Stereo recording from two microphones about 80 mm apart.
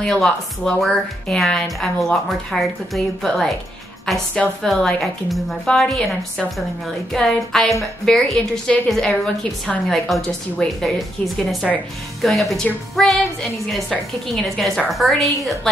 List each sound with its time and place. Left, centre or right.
0.0 s a woman's voice: centre